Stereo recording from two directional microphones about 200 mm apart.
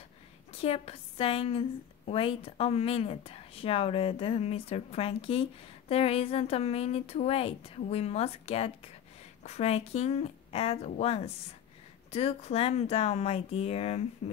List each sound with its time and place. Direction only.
0.5 s a woman's voice: 30° left (ahead or behind)